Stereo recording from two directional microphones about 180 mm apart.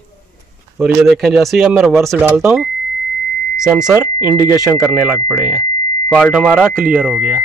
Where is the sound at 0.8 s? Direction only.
Centre (ahead or behind).